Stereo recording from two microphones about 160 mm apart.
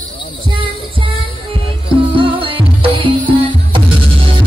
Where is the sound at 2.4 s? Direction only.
35° right (ahead or behind).